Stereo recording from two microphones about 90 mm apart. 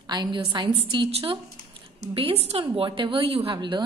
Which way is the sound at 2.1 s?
90° right.